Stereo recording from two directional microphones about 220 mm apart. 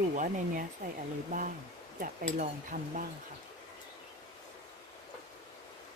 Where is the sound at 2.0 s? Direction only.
35° right (ahead or behind).